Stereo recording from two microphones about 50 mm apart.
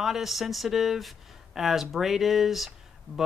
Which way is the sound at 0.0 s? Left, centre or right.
Centre.